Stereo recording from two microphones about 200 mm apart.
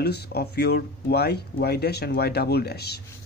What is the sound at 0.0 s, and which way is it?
Speech, 55° left (ahead or behind).